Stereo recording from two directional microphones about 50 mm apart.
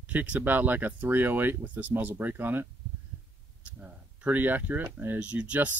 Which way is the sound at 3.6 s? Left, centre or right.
Right.